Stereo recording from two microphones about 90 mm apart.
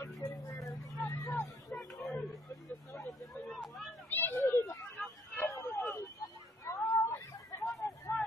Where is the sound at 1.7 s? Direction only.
5° left (ahead or behind).